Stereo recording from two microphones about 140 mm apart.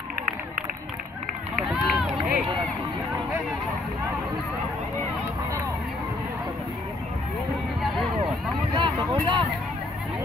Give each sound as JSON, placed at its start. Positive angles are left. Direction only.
{"t": 1.6, "sound": "run", "side_deg": -5}
{"t": 8.7, "sound": "vehicle", "side_deg": -35}